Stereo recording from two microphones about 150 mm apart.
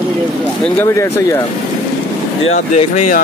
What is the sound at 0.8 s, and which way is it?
Speech, 20° left (ahead or behind).